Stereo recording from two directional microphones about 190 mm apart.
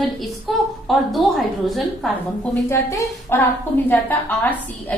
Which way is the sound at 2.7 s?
15° left (ahead or behind).